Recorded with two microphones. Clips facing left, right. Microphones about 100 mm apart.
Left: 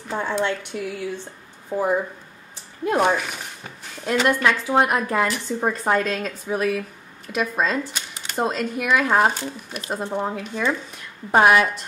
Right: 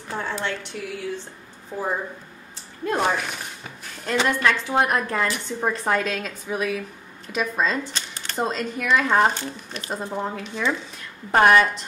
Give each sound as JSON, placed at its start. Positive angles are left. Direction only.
{"t": 0.1, "sound": "speech", "side_deg": 15}
{"t": 3.0, "sound": "speech", "side_deg": 5}
{"t": 4.4, "sound": "speech", "side_deg": 10}